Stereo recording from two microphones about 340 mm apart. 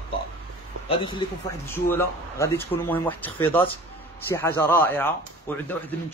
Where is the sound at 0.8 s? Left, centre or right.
Centre.